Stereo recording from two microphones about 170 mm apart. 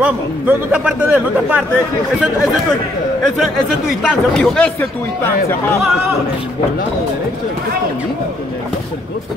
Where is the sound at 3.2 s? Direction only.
Centre (ahead or behind).